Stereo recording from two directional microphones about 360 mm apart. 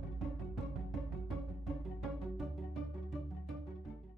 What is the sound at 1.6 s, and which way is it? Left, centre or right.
Music, centre.